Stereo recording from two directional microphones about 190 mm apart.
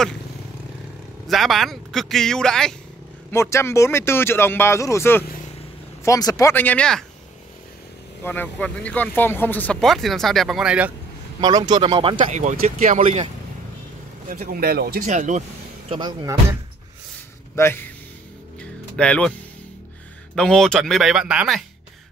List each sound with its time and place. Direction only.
1.2 s speech: centre (ahead or behind)
3.3 s speech: 15° left (ahead or behind)
8.2 s speech: 10° left (ahead or behind)
11.4 s speech: 20° right (ahead or behind); by 13.3 s 35° right (ahead or behind)
14.3 s speech: 50° right (ahead or behind)
15.0 s speech: 40° right (ahead or behind)
15.9 s speech: 25° right (ahead or behind)
17.6 s a man's voice: 10° left (ahead or behind)
18.6 s music: 5° left (ahead or behind)
20.3 s speech: 5° left (ahead or behind)